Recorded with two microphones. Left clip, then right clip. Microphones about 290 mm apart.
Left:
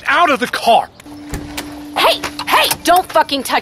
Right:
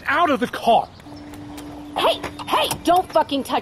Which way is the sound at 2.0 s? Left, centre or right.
Left.